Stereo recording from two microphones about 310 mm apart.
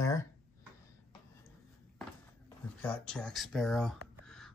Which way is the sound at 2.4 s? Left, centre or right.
Centre.